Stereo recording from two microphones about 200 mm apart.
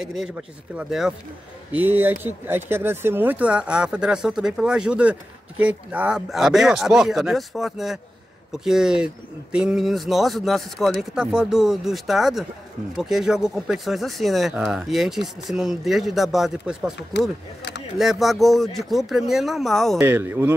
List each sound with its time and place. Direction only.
0.0 s speech: centre (ahead or behind)
17.1 s speech: 60° left (ahead or behind)
17.6 s a sound: 60° left (ahead or behind)
17.9 s speech: centre (ahead or behind)
20.0 s speech: 10° right (ahead or behind)